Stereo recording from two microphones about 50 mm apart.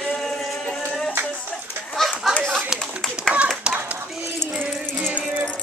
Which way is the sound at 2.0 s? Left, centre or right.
Centre.